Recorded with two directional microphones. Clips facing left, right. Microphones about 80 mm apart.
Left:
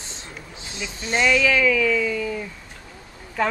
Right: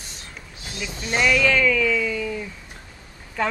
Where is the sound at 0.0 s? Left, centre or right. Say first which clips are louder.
Left 2 dB; left.